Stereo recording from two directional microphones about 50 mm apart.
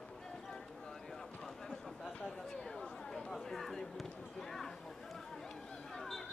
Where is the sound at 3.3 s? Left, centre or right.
Centre.